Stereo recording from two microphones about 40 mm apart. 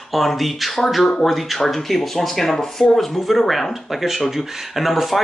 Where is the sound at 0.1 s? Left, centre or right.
Centre.